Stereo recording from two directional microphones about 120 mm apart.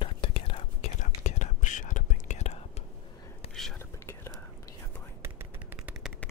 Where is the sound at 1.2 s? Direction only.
90° left; by 2.6 s 75° left (ahead or behind).